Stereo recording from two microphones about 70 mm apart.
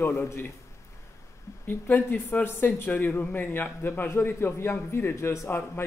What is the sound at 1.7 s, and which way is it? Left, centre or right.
A man's voice, left.